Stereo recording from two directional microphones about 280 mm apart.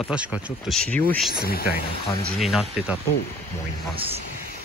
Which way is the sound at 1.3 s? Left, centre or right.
Left.